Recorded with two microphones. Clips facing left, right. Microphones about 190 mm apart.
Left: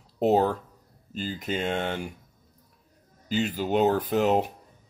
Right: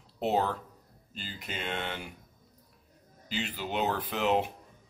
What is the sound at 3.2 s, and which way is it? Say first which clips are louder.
Speech: left 9 dB; 45° left (ahead or behind).